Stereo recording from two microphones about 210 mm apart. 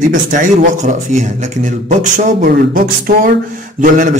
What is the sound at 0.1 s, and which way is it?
A man's voice, 40° right (ahead or behind).